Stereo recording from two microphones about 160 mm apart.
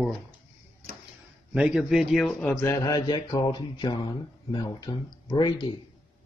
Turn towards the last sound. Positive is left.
turn(degrees=30)  # may be behind; listen again after turning